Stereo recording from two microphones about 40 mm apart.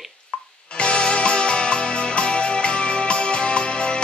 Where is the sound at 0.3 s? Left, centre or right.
Left.